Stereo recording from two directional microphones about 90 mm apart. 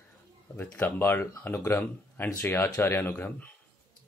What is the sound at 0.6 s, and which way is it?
Speech, 20° left (ahead or behind).